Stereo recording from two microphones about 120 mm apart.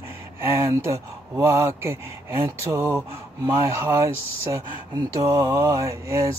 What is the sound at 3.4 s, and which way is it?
Mantra, 25° right (ahead or behind).